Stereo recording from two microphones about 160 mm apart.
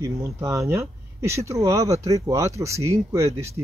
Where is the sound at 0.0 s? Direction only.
20° right (ahead or behind).